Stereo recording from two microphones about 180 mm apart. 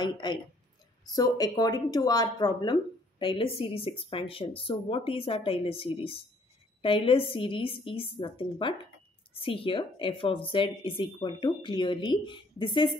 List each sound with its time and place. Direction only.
0.0 s a woman's voice: 25° left (ahead or behind)